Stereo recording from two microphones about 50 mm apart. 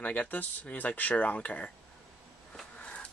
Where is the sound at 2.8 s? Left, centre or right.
Left.